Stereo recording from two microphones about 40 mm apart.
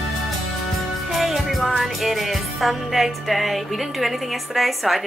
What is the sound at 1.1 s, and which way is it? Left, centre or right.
Music, centre.